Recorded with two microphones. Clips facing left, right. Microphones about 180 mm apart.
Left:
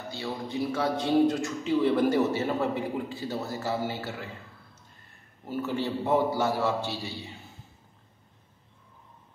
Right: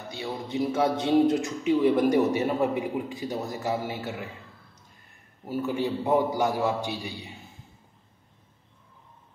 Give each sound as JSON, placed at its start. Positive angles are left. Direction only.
{"t": 0.1, "sound": "a man's voice", "side_deg": -20}
{"t": 5.5, "sound": "a man's voice", "side_deg": -10}